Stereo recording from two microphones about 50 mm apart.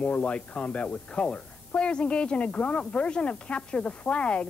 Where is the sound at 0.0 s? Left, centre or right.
Left.